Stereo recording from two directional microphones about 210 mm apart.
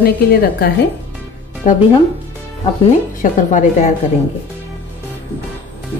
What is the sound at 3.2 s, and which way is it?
Speech, 35° left (ahead or behind).